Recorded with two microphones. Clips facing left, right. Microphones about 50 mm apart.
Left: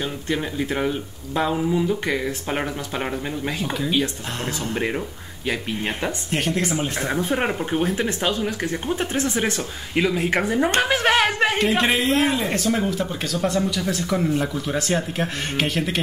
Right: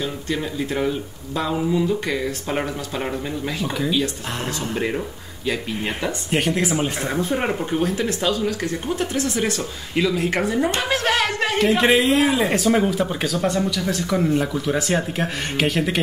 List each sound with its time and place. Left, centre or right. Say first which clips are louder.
0.0 s speech: even; left
6.3 s speech: right 3 dB; centre
7.0 s speech: even; centre
11.6 s speech: right 3 dB; centre
12.4 s speech: right 4 dB; centre